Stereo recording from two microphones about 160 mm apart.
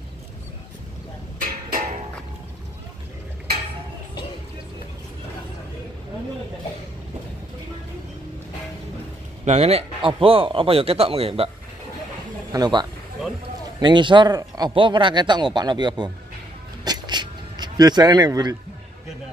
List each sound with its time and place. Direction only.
9.4 s a man's voice: 40° right (ahead or behind)
12.5 s speech: 25° right (ahead or behind)
16.8 s a sound: 25° right (ahead or behind)